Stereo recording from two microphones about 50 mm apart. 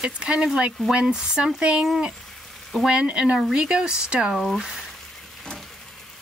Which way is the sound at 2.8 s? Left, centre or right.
Centre.